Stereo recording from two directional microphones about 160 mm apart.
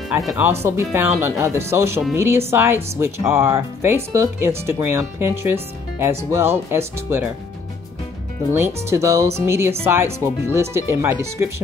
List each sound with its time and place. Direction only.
0.4 s speech: 15° right (ahead or behind)
8.5 s speech: 15° right (ahead or behind)